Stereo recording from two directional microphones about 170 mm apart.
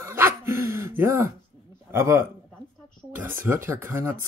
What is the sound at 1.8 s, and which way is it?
A man's voice, 15° right (ahead or behind).